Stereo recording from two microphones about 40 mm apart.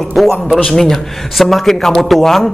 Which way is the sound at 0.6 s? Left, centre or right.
Centre.